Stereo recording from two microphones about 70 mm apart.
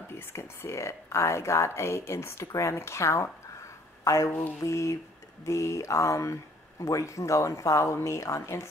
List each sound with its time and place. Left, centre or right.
0.1 s a woman's voice: left